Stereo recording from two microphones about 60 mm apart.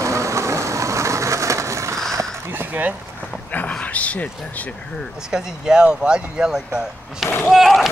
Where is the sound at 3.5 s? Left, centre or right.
Left.